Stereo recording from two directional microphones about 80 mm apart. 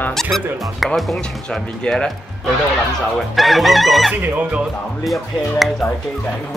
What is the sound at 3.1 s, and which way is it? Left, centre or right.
Chicken, centre.